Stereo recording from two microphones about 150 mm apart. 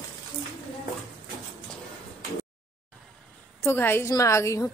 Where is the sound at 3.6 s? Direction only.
15° left (ahead or behind).